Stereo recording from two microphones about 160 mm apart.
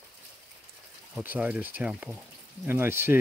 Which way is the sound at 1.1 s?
10° right (ahead or behind).